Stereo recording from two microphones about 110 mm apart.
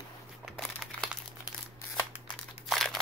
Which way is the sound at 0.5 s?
Centre (ahead or behind).